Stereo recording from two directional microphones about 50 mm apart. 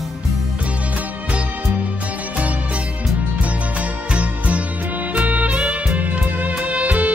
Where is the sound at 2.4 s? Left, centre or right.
Right.